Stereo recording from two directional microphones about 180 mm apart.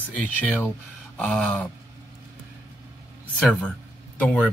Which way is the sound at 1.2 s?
5° left (ahead or behind).